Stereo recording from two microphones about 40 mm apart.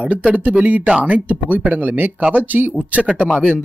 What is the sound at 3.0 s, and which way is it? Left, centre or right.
Speech, right.